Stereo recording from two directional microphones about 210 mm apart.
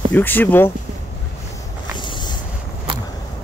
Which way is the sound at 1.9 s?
20° left (ahead or behind).